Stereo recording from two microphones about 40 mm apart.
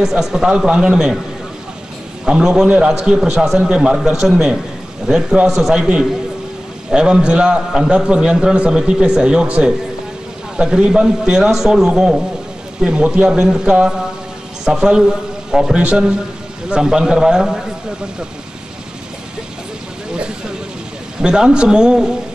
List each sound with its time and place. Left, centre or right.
0.0 s a man's voice: centre
2.2 s a man's voice: centre
6.9 s a man's voice: right
14.6 s a man's voice: centre
21.2 s a man's voice: centre